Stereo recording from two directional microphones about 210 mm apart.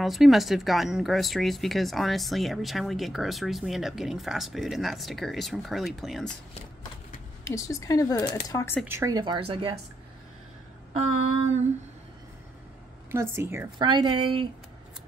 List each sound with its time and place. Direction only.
0.0 s speech: centre (ahead or behind)
7.4 s speech: 15° left (ahead or behind)
8.8 s a woman's voice: 15° right (ahead or behind)
13.1 s a woman's voice: 10° right (ahead or behind)